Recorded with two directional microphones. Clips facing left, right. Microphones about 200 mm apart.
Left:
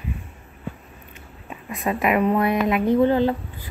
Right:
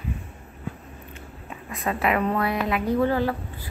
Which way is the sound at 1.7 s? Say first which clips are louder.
Left 3 dB; 15° left (ahead or behind).